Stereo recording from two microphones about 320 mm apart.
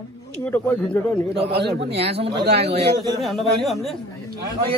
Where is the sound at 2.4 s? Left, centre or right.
Right.